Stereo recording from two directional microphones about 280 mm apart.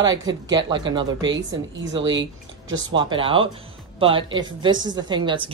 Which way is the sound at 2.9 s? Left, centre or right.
Centre.